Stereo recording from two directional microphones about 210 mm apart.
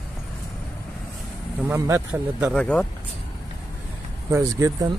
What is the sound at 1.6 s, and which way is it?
Speech, 10° right (ahead or behind).